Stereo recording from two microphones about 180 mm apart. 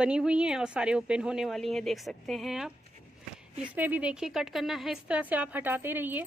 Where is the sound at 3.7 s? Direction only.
10° right (ahead or behind).